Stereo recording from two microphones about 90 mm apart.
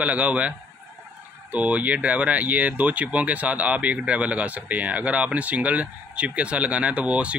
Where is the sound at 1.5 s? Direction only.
15° right (ahead or behind).